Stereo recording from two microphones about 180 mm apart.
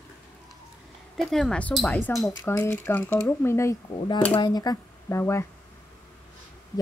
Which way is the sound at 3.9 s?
25° left (ahead or behind).